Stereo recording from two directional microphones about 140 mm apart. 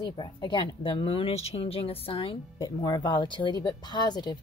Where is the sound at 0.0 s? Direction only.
30° left (ahead or behind).